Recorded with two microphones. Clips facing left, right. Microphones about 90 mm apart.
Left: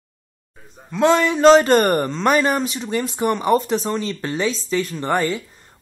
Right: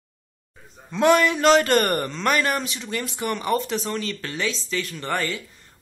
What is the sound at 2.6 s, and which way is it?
Speech, 40° left (ahead or behind).